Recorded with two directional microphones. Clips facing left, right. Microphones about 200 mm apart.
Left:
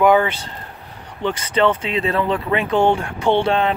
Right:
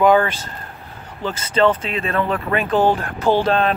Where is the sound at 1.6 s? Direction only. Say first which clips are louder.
Right 1 dB; 20° left (ahead or behind).